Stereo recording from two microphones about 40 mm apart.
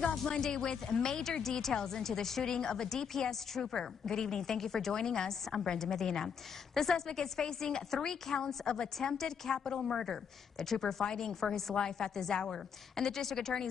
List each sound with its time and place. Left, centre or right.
0.1 s a woman's voice: centre